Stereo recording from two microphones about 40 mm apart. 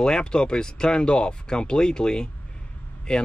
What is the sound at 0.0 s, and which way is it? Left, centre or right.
Speech, left.